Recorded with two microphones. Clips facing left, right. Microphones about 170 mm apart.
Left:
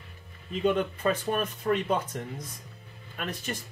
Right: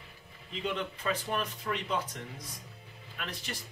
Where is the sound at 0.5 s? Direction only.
50° left (ahead or behind).